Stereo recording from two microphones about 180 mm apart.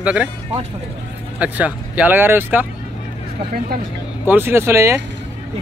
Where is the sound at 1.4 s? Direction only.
10° right (ahead or behind).